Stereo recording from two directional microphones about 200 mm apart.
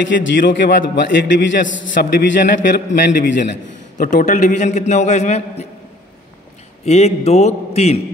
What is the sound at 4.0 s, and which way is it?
A man's voice, 40° left (ahead or behind).